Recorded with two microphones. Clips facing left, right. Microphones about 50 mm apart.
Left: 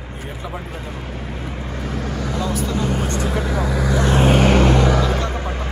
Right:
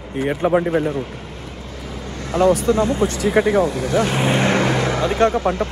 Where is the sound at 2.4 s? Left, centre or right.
Right.